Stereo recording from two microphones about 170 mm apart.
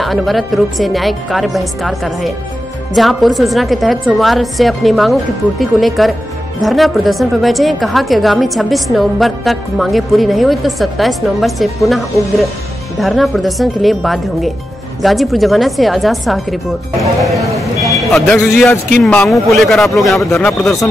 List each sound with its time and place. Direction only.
0.0 s a woman's voice: centre (ahead or behind)
17.8 s vehicle: centre (ahead or behind)
19.0 s a woman's voice: 10° left (ahead or behind)